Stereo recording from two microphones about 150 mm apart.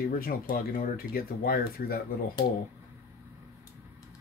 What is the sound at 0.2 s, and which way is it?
Speech, 70° left (ahead or behind).